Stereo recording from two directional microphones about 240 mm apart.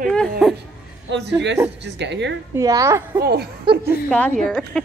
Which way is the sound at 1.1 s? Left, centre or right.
Right.